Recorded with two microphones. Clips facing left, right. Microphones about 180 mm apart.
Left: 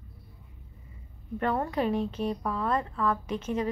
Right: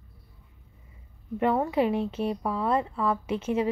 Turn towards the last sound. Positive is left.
turn(degrees=-10)  # may be behind; listen again after turning